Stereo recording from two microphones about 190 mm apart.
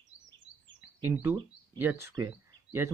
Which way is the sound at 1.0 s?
15° right (ahead or behind).